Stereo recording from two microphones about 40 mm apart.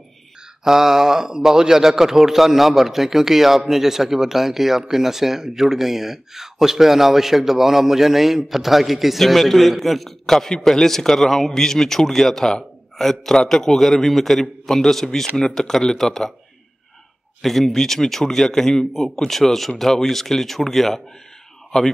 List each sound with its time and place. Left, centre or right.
0.7 s a man's voice: centre
17.4 s a man's voice: centre